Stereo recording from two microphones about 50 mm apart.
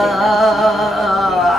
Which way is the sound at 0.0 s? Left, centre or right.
Centre.